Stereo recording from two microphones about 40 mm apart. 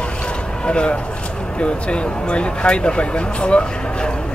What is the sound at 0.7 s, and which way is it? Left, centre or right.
Speech, left.